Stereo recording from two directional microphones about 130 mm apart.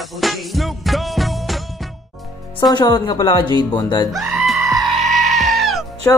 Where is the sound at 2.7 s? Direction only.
35° left (ahead or behind).